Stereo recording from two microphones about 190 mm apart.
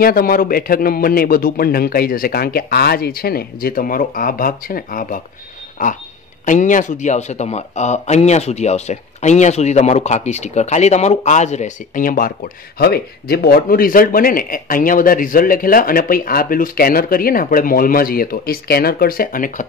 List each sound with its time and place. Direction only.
0.0 s speech: 50° left (ahead or behind)